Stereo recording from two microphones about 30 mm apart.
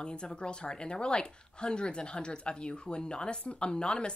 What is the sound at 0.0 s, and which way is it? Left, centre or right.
Speech, left.